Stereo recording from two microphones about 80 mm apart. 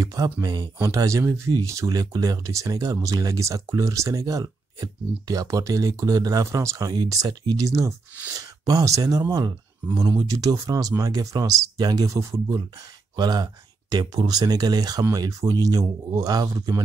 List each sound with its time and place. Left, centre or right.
0.0 s speech: right
0.9 s speech: right
7.2 s speech: right
7.6 s speech: right
10.0 s speech: right
13.1 s speech: right